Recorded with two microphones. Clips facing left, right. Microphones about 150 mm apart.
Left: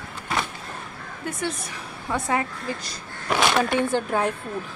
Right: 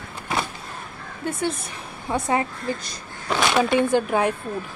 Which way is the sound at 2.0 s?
20° right (ahead or behind).